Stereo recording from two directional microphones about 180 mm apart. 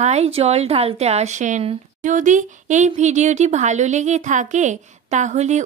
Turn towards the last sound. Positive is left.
turn(degrees=-40)  # may be behind; listen again after turning